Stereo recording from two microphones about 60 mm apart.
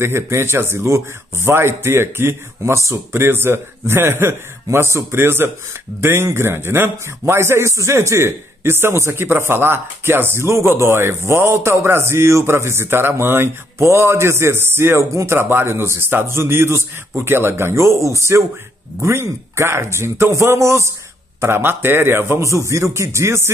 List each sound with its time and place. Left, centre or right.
0.0 s a man's voice: right
21.4 s a man's voice: right
22.4 s speech: right